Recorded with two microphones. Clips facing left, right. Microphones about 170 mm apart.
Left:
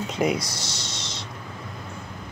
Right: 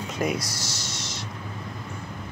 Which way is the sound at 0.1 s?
20° left (ahead or behind).